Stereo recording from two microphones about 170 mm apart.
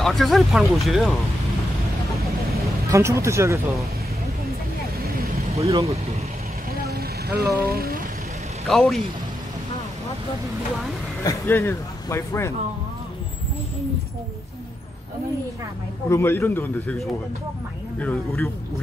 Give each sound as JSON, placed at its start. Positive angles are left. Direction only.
{"t": 0.0, "sound": "speech", "side_deg": 0}
{"t": 2.9, "sound": "speech", "side_deg": -15}
{"t": 5.0, "sound": "vehicle", "side_deg": -60}
{"t": 5.5, "sound": "speech", "side_deg": -35}
{"t": 6.7, "sound": "vehicle", "side_deg": -65}
{"t": 8.6, "sound": "speech", "side_deg": 0}
{"t": 11.2, "sound": "speech", "side_deg": 15}
{"t": 16.1, "sound": "speech", "side_deg": 15}
{"t": 17.9, "sound": "speech", "side_deg": 10}